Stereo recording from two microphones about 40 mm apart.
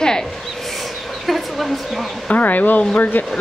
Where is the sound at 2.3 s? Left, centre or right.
Left.